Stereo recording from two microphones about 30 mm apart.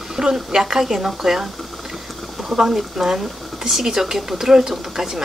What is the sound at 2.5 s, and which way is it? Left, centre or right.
Speech, centre.